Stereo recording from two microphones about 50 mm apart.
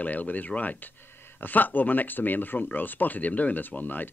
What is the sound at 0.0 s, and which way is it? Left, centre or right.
Speech, left.